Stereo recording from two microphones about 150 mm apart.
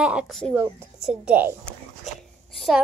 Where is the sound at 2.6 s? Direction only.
Centre (ahead or behind).